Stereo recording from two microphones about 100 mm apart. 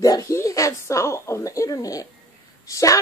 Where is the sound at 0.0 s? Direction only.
35° left (ahead or behind).